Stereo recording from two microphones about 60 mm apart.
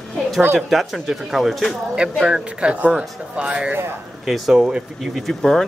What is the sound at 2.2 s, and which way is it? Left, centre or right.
Speech, centre.